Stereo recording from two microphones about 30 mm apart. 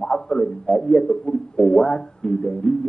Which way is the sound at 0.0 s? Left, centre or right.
Left.